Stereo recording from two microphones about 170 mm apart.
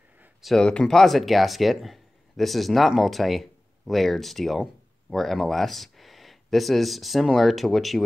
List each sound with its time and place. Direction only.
0.2 s speech: centre (ahead or behind)